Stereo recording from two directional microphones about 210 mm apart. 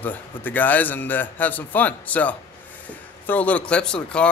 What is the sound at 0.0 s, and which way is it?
A man's voice, 10° left (ahead or behind).